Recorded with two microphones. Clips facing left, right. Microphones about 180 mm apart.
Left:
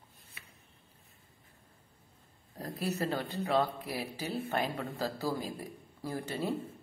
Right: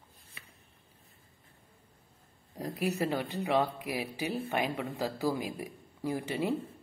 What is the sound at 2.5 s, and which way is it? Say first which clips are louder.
Speech: right 3 dB; 15° right (ahead or behind).